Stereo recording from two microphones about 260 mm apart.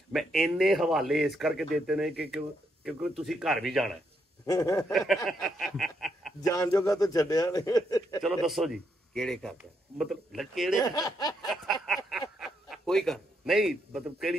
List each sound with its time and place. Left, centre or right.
0.1 s a man's voice: centre
4.5 s a man's voice: centre
4.9 s a man's voice: centre
5.8 s snicker: centre
6.4 s a man's voice: centre
8.2 s a man's voice: centre
10.8 s a man's voice: centre
11.4 s a sound: centre